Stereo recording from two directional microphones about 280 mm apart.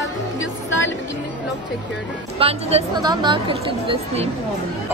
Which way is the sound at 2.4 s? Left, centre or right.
Right.